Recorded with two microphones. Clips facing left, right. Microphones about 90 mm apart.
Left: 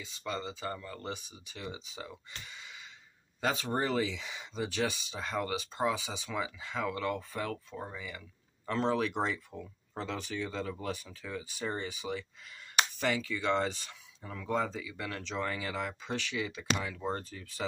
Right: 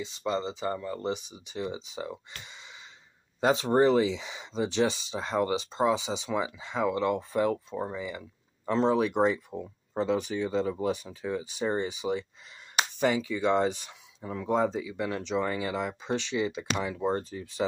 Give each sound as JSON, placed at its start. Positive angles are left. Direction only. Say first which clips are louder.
{"t": 0.0, "sound": "speech", "louder": "right 7 dB", "side_deg": -25}